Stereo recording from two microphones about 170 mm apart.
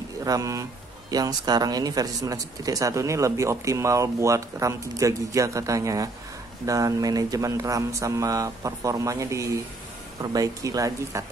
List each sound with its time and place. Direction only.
0.2 s speech: 20° right (ahead or behind)